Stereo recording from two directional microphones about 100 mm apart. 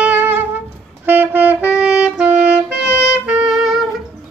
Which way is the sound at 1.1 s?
20° right (ahead or behind).